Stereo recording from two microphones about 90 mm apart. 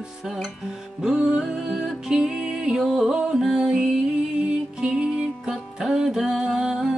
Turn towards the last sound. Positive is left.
turn(degrees=-5)  # may be behind; listen again after turning